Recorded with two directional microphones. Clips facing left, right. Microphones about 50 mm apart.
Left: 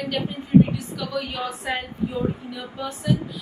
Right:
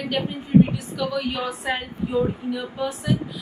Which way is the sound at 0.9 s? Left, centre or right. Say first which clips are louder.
Right 5 dB; centre.